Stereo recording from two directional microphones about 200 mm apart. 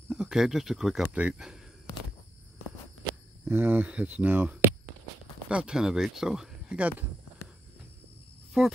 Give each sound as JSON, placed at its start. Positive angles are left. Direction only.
{"t": 0.1, "sound": "speech", "side_deg": -5}
{"t": 3.0, "sound": "speech", "side_deg": -10}
{"t": 8.6, "sound": "speech", "side_deg": 0}